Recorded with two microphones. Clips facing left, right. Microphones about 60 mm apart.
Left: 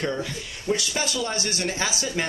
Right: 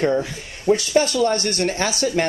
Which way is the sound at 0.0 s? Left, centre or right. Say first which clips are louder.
Right 8 dB; right.